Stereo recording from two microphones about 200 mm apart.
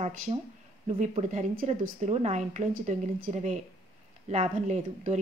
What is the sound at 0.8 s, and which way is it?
Speech, 35° right (ahead or behind).